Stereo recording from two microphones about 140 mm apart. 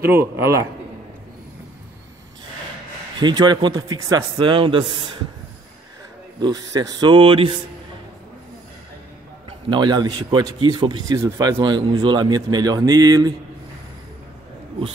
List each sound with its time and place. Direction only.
0.0 s speech: 15° right (ahead or behind)
3.2 s a man's voice: 30° right (ahead or behind)
6.4 s a man's voice: 30° right (ahead or behind)
9.5 s a man's voice: 35° right (ahead or behind)